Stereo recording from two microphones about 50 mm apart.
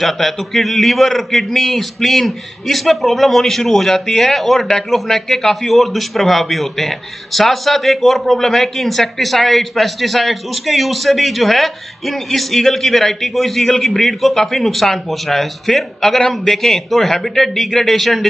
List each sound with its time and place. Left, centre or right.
0.0 s speech: centre